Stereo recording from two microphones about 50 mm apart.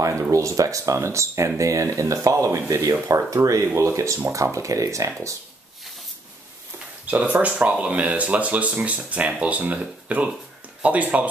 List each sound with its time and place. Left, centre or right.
0.0 s speech: right
1.6 s speech: right
2.3 s speech: right
7.3 s speech: right